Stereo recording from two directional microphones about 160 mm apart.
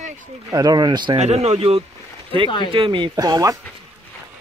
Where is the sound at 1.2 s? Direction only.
45° right (ahead or behind); by 3.6 s 20° right (ahead or behind).